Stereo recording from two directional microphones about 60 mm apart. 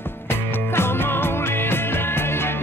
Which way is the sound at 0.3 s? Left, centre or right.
Left.